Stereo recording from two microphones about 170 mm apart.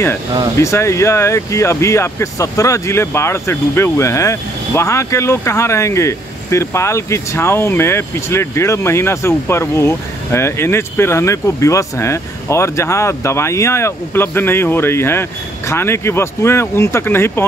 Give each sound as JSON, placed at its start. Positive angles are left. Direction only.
{"t": 0.6, "sound": "speech", "side_deg": 15}